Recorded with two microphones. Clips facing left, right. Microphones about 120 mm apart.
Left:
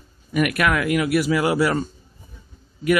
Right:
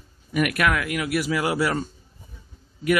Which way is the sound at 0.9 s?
45° left (ahead or behind).